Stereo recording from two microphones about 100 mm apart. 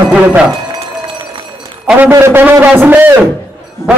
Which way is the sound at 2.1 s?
25° right (ahead or behind).